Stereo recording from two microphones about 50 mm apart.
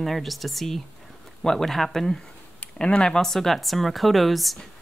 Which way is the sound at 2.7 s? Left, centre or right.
Centre.